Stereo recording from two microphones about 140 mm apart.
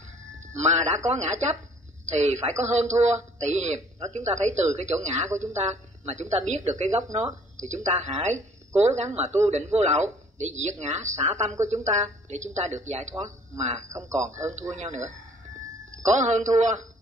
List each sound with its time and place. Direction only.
0.5 s speech: 55° right (ahead or behind)